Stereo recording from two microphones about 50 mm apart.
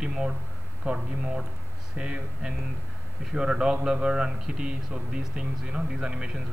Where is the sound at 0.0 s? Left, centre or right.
Centre.